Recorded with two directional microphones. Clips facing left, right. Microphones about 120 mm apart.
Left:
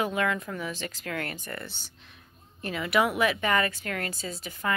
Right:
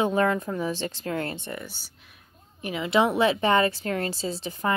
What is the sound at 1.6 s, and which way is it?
Speech, 10° right (ahead or behind).